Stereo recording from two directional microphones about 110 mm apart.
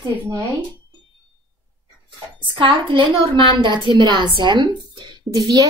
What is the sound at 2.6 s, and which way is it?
A woman's voice, 50° right (ahead or behind).